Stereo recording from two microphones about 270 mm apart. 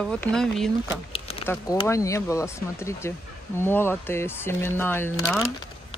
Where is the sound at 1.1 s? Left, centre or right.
Left.